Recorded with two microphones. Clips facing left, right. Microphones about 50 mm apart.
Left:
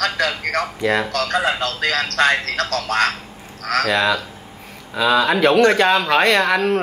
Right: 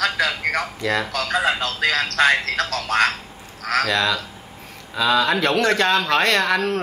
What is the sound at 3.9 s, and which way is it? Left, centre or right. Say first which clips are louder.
Speech: left 3 dB; centre.